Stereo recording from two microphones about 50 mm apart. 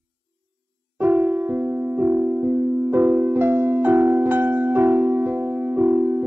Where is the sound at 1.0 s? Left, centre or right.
Right.